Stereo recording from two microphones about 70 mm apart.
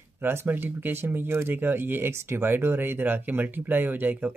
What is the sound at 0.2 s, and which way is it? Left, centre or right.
Speech, right.